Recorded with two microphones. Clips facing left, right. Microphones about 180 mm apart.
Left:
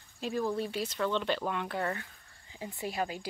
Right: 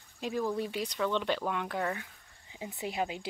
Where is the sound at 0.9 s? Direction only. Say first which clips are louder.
Right 1 dB; 5° right (ahead or behind).